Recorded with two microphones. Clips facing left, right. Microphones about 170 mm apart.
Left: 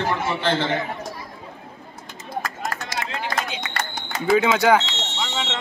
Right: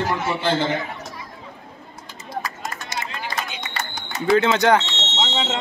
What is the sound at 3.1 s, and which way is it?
Run, 55° left (ahead or behind).